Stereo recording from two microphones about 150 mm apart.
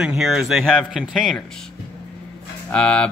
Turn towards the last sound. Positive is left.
turn(degrees=5)  # may be behind; listen again after turning